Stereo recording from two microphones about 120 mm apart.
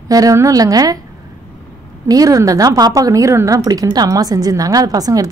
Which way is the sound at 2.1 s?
30° right (ahead or behind).